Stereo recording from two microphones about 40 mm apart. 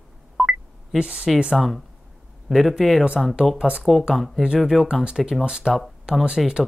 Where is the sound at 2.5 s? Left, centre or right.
Centre.